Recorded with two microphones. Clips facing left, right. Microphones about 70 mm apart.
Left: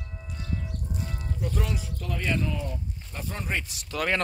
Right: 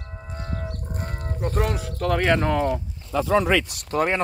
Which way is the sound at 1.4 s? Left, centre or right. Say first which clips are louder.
Right 7 dB; right.